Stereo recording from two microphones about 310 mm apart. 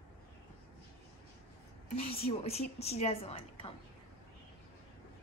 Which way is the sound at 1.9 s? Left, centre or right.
Centre.